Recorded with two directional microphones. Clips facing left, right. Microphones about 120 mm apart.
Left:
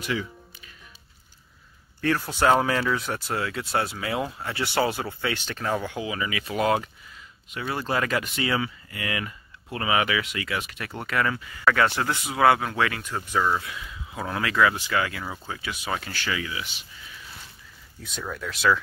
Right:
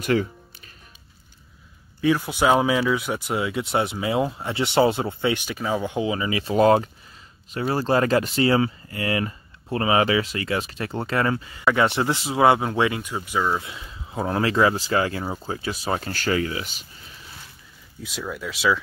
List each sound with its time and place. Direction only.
0.0 s speech: 50° right (ahead or behind)
2.0 s speech: 10° right (ahead or behind)
5.9 s speech: 25° right (ahead or behind); by 13.6 s 10° right (ahead or behind)
13.6 s speech: 25° right (ahead or behind)
18.0 s speech: 5° right (ahead or behind)